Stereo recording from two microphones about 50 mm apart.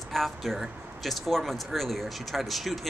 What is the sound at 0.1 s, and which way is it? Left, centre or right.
Speech, centre.